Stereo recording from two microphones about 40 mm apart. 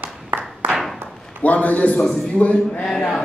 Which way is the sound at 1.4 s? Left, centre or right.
Left.